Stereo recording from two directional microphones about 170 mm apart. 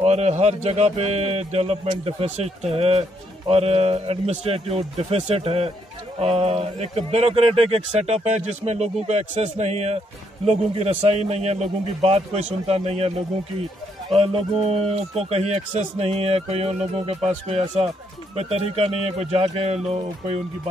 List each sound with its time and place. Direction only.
0.0 s a man's voice: 40° right (ahead or behind)
14.1 s a man's voice: 35° right (ahead or behind)